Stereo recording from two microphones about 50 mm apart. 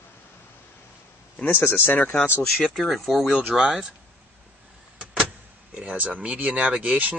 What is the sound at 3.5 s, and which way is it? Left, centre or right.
Speech, centre.